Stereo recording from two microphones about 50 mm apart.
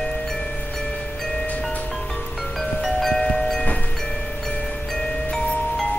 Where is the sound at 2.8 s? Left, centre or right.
Centre.